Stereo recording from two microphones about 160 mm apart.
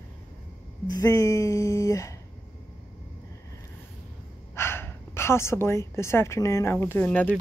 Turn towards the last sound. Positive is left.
turn(degrees=10)  # may be behind; listen again after turning